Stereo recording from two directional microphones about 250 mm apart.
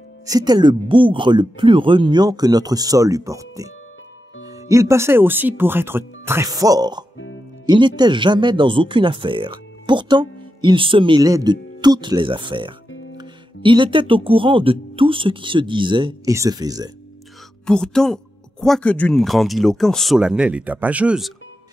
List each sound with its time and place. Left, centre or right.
0.3 s speech: centre
17.6 s speech: centre